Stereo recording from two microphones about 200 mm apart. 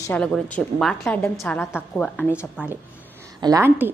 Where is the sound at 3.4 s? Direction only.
15° right (ahead or behind).